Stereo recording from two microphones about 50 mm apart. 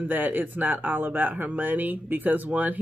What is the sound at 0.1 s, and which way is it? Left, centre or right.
Speech, right.